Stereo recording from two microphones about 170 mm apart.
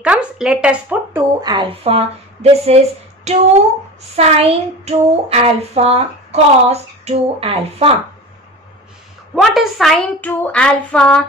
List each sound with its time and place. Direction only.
0.0 s speech: 5° right (ahead or behind)
1.4 s child singing: 25° right (ahead or behind)
9.3 s a woman's voice: centre (ahead or behind)